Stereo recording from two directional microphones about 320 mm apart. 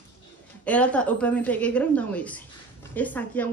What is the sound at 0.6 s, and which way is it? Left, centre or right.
A woman's voice, centre.